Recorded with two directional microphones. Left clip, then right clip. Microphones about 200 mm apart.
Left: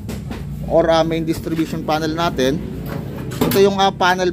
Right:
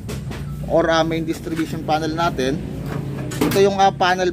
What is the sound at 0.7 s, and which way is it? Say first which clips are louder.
Speech: left 2 dB; centre (ahead or behind).